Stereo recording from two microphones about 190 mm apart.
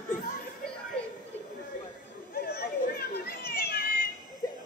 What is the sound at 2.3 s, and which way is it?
Children playing, 55° left (ahead or behind).